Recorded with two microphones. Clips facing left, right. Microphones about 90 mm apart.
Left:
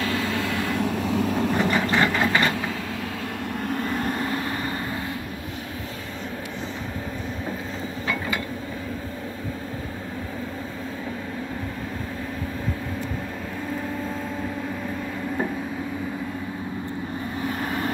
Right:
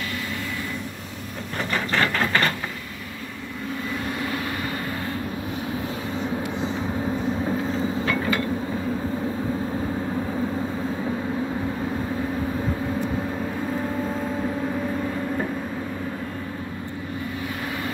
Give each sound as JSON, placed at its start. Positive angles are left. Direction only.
{"t": 0.7, "sound": "vehicle", "side_deg": 90}
{"t": 1.7, "sound": "engine", "side_deg": 10}